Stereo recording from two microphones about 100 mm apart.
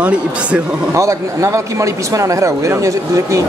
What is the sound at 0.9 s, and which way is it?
Speech, 30° right (ahead or behind).